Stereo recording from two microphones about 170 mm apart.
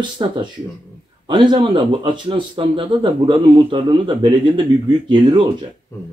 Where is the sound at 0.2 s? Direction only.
25° right (ahead or behind).